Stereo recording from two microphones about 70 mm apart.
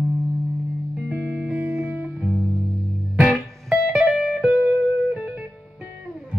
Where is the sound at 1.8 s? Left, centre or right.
Right.